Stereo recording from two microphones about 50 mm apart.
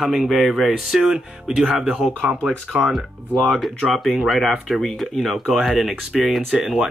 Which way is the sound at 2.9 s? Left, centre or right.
Centre.